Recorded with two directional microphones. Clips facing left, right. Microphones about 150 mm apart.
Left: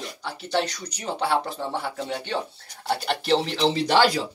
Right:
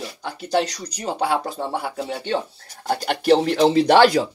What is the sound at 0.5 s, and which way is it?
Speech, 35° right (ahead or behind).